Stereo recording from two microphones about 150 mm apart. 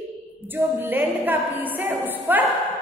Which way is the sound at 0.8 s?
15° right (ahead or behind).